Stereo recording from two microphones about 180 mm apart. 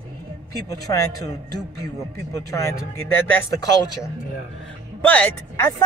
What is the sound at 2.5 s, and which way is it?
Speech, 15° left (ahead or behind).